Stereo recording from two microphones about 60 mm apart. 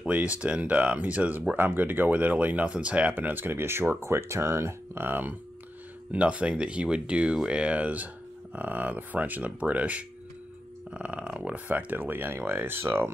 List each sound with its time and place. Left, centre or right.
0.0 s speech: right
5.0 s speech: right
6.1 s speech: centre; by 13.1 s right